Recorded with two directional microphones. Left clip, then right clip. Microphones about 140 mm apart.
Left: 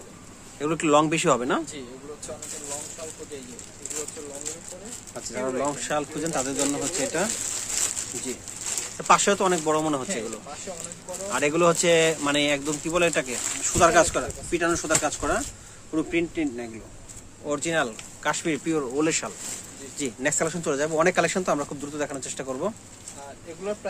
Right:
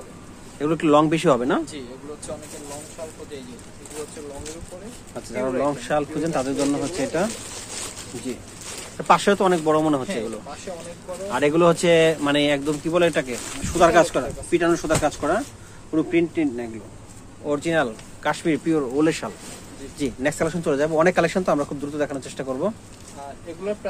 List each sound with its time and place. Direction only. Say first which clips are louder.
0.6 s speech: right 3 dB; centre (ahead or behind)
1.7 s speech: right 3 dB; 20° left (ahead or behind)
5.1 s speech: right 4 dB; centre (ahead or behind)
8.9 s speech: right 2 dB; 5° right (ahead or behind)
11.2 s speech: right 3 dB; 5° right (ahead or behind)